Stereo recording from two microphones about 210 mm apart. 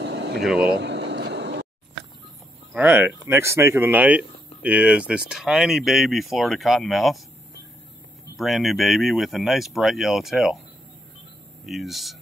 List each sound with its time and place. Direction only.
0.0 s vehicle: 55° right (ahead or behind)
0.4 s speech: centre (ahead or behind)
0.7 s vehicle: 55° right (ahead or behind)
2.7 s speech: 10° right (ahead or behind)
8.4 s speech: centre (ahead or behind)
11.6 s speech: centre (ahead or behind)